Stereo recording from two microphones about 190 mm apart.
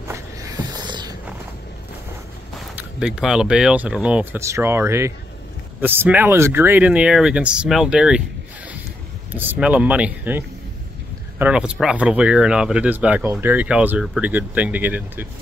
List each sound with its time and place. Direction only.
0.1 s a sound: 20° right (ahead or behind)
2.7 s speech: 5° right (ahead or behind)
9.3 s speech: 10° right (ahead or behind)